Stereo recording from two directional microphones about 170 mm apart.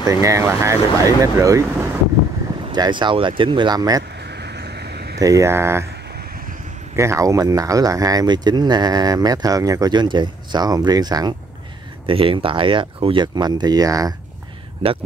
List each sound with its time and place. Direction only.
0.0 s speech: 15° right (ahead or behind)
4.1 s vehicle: 80° right
5.2 s speech: 20° right (ahead or behind)
6.0 s a sound: 65° right (ahead or behind)
7.0 s speech: 15° right (ahead or behind)